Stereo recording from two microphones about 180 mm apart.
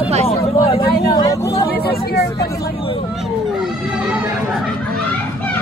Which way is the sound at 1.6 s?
55° left (ahead or behind).